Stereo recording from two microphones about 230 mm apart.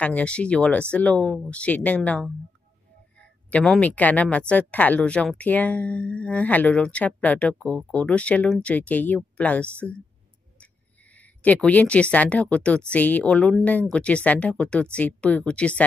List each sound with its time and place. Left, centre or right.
0.0 s a woman's voice: centre
11.1 s a woman's voice: centre